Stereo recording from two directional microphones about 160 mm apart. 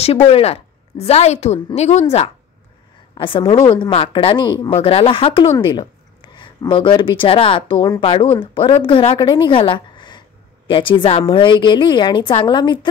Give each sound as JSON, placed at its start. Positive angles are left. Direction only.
{"t": 0.0, "sound": "a woman's voice", "side_deg": 40}